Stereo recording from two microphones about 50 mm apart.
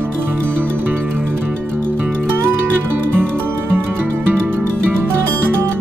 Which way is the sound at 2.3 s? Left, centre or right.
Right.